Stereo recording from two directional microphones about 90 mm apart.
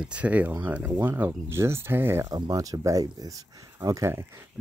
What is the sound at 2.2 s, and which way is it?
Speech, 45° right (ahead or behind).